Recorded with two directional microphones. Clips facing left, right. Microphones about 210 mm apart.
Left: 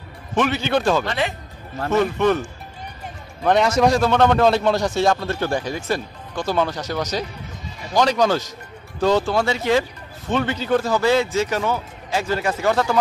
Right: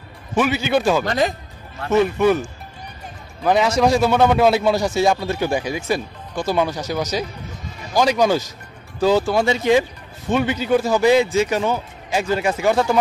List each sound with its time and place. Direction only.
0.4 s a man's voice: 10° right (ahead or behind)
1.0 s speech: 40° right (ahead or behind)
1.9 s a man's voice: 10° right (ahead or behind)
3.4 s a man's voice: centre (ahead or behind)